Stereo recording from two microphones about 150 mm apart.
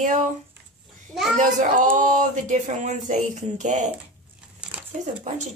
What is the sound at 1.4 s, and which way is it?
Speech, 60° right (ahead or behind).